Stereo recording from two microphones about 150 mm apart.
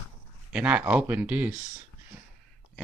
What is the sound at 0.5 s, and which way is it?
Speech, 10° right (ahead or behind).